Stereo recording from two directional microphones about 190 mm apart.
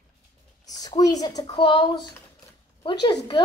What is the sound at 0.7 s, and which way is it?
A woman's voice, 20° left (ahead or behind).